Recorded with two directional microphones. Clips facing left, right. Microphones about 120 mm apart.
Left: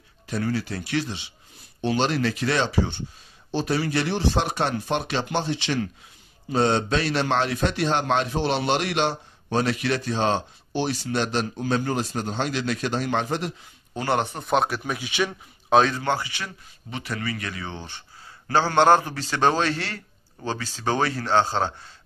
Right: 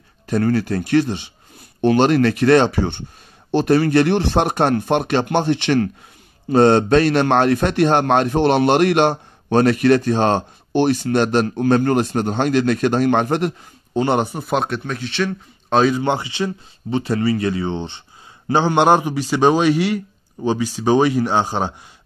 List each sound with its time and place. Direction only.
0.3 s a man's voice: 50° right (ahead or behind)
13.9 s speech: 20° right (ahead or behind)
14.3 s speech: centre (ahead or behind)
16.0 s a man's voice: 20° right (ahead or behind)